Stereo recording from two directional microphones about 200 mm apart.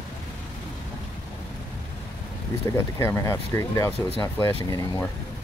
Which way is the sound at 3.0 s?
15° left (ahead or behind).